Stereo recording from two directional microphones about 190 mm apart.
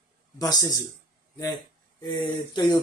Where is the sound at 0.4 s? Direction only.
20° left (ahead or behind).